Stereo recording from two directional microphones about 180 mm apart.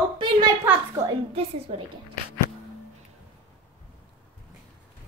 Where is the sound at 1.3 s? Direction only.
30° right (ahead or behind).